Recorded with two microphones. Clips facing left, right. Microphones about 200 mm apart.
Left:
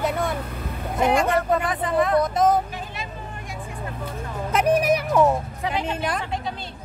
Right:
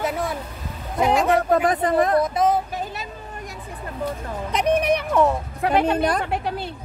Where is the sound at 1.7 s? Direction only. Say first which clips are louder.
Right 3 dB; 40° right (ahead or behind).